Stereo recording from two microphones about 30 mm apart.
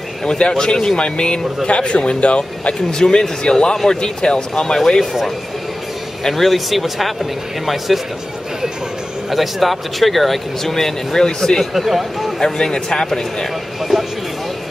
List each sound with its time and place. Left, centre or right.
0.2 s speech: left
1.0 s speech: left
2.9 s speech: left
4.7 s speech: centre
6.3 s speech: centre
9.3 s speech: centre
11.7 s speech: centre
12.4 s speech: left